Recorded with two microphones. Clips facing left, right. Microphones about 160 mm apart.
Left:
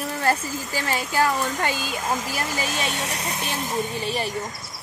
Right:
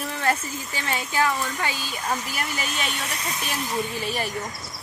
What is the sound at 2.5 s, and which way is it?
Speech, 30° left (ahead or behind).